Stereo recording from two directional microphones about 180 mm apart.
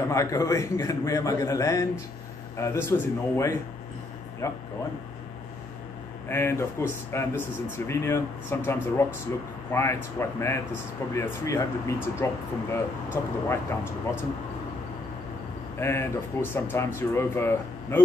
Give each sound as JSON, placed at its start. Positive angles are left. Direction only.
{"t": 0.1, "sound": "speech", "side_deg": 15}
{"t": 6.2, "sound": "speech", "side_deg": 15}
{"t": 15.8, "sound": "speech", "side_deg": 15}